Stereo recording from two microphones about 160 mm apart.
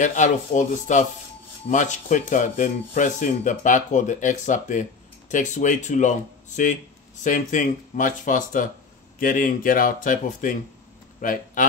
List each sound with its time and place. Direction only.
0.0 s speech: 50° left (ahead or behind)